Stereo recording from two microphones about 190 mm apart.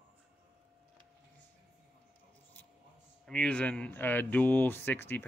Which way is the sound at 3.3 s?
5° left (ahead or behind).